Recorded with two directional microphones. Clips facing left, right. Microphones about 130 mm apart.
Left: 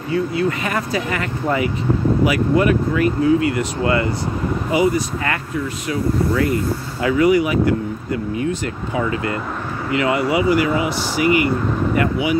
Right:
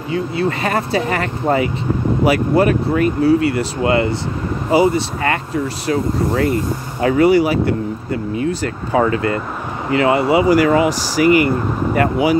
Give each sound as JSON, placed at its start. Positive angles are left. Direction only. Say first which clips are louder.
{"t": 0.1, "sound": "speech", "louder": "even", "side_deg": -30}
{"t": 9.8, "sound": "speech", "louder": "right 4 dB", "side_deg": -30}
{"t": 10.4, "sound": "speech", "louder": "right 5 dB", "side_deg": -40}